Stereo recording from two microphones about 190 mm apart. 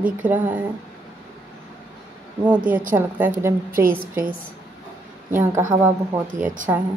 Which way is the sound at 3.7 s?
50° right (ahead or behind).